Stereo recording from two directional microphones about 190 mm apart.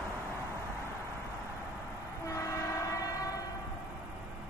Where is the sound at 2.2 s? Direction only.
15° left (ahead or behind).